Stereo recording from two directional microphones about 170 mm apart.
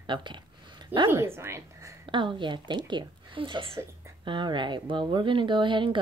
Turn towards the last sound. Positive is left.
turn(degrees=-30)  # may be behind; listen again after turning